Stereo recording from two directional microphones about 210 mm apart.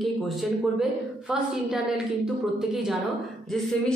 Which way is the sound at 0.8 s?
5° right (ahead or behind).